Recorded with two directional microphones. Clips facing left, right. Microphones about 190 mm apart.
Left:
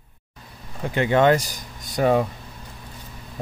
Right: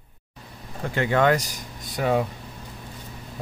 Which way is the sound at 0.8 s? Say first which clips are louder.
Left 3 dB; 20° left (ahead or behind).